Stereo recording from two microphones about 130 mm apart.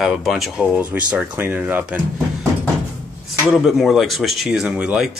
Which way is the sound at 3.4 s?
Centre (ahead or behind).